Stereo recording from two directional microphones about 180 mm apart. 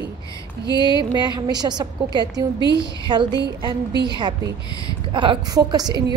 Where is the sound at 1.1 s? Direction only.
25° right (ahead or behind).